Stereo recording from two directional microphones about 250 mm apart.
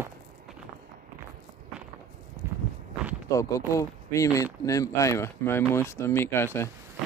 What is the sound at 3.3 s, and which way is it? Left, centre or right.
Speech, centre.